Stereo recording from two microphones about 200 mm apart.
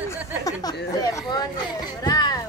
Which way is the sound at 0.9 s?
20° left (ahead or behind).